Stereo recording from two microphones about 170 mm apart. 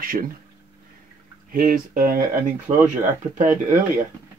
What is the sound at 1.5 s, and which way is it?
Speech, 55° right (ahead or behind).